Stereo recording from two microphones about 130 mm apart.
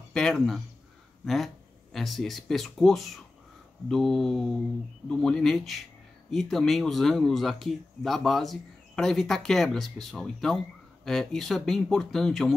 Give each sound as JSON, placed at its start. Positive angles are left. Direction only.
{"t": 0.1, "sound": "speech", "side_deg": 5}